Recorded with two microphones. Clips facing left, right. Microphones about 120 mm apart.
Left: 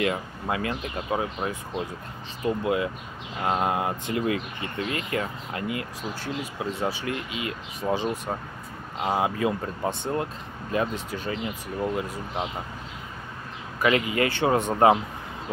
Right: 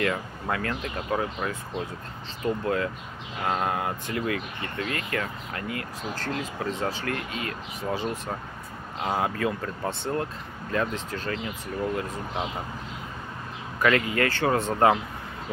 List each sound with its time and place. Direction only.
0.0 s speech: 20° left (ahead or behind)
2.4 s speech: 15° left (ahead or behind)
13.7 s speech: 15° left (ahead or behind)